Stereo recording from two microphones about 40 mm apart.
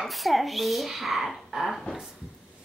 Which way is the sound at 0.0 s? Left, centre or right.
Centre.